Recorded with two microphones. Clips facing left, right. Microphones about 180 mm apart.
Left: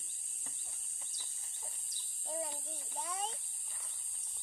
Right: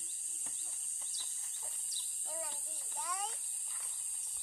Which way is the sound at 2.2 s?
25° left (ahead or behind).